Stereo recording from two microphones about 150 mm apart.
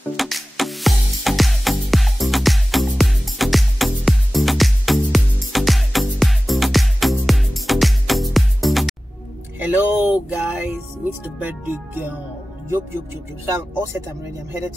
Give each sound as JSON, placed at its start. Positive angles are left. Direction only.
{"t": 0.2, "sound": "music", "side_deg": 0}
{"t": 9.6, "sound": "music", "side_deg": -10}